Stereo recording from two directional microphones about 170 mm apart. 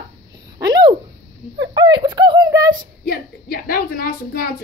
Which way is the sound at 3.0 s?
60° left (ahead or behind).